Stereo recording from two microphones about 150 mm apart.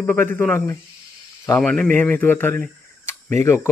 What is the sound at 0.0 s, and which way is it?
Speech, 15° left (ahead or behind).